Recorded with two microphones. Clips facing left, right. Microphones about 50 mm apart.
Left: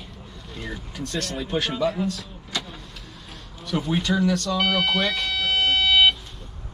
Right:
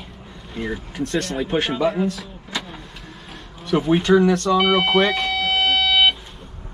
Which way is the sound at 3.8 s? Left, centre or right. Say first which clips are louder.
Right 7 dB; right.